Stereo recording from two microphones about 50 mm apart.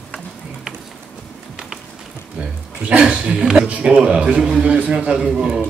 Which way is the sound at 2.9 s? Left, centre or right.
Centre.